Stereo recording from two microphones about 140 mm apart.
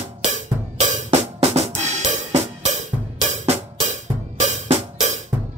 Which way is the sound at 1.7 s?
55° right (ahead or behind).